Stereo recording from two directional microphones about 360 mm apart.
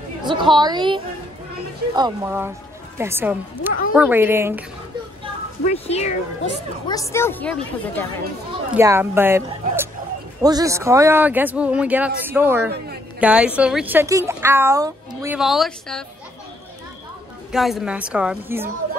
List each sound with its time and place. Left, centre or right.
0.2 s a woman's voice: centre
5.7 s a woman's voice: centre
8.7 s a woman's voice: centre
12.7 s a man's voice: right
13.2 s a woman's voice: centre
17.5 s a woman's voice: centre